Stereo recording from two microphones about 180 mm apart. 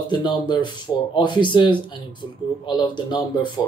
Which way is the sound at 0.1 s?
25° left (ahead or behind).